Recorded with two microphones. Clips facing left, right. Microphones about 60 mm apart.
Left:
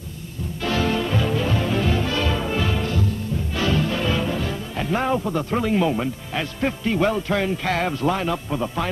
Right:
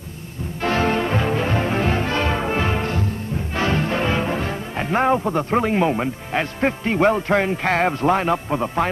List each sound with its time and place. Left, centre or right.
0.6 s music: right
3.5 s speech: right